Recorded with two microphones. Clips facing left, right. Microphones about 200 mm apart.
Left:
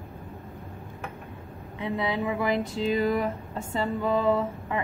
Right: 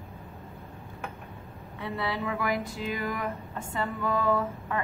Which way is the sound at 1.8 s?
15° left (ahead or behind).